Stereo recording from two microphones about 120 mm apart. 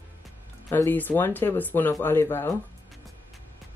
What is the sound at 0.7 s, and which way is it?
Speech, 15° left (ahead or behind).